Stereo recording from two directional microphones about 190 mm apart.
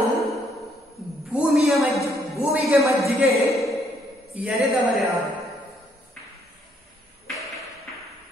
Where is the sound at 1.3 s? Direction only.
Centre (ahead or behind).